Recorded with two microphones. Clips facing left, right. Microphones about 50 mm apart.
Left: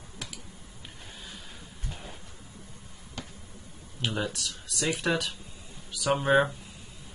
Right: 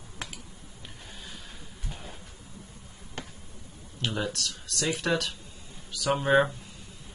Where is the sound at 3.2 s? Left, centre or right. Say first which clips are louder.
Right 1 dB; right.